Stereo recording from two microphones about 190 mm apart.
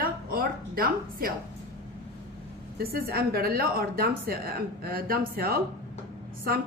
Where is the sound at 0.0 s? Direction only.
50° right (ahead or behind).